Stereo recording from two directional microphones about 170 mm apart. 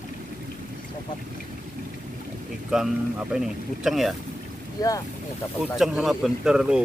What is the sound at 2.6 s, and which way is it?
Speech, 5° right (ahead or behind).